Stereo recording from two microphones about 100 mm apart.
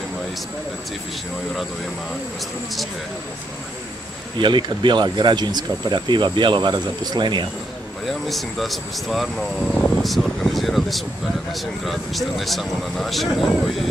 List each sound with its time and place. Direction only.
4.4 s speech: 50° right (ahead or behind)
8.1 s speech: centre (ahead or behind)